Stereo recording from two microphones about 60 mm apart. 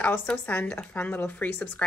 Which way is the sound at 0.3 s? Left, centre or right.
Left.